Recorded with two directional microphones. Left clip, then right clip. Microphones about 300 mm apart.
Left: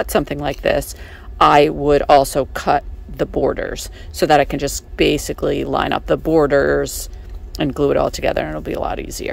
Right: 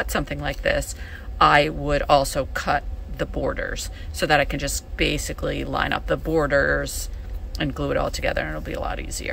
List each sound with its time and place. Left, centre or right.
0.0 s speech: left